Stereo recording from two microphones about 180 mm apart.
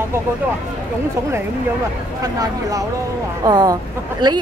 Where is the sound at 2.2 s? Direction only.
20° right (ahead or behind).